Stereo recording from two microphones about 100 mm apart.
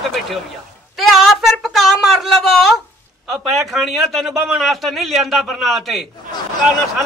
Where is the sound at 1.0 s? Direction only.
5° right (ahead or behind).